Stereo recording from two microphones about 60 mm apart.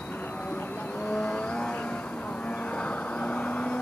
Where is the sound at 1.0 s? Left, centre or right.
Left.